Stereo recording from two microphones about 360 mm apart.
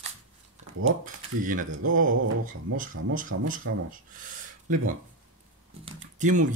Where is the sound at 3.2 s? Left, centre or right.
Right.